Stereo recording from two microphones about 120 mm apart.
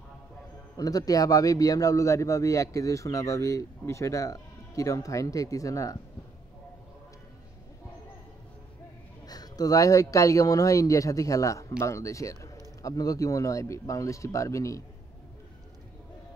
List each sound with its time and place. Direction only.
0.7 s a man's voice: 30° left (ahead or behind)
9.2 s a man's voice: 30° left (ahead or behind)